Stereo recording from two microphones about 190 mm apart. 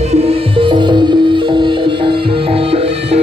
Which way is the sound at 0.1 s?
30° right (ahead or behind).